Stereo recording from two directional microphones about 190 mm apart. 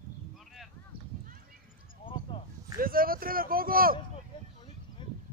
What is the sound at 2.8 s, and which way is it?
Speech, 50° right (ahead or behind).